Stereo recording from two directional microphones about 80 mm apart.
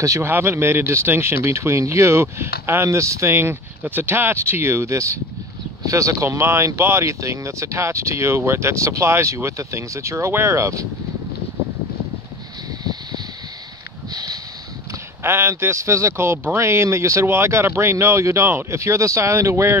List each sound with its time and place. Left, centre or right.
0.0 s speech: right
0.3 s speech: right
14.1 s a sound: right
15.2 s speech: right